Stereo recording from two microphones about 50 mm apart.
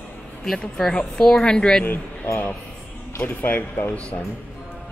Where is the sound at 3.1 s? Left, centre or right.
Left.